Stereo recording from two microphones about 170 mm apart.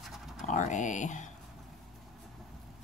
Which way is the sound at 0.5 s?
45° left (ahead or behind).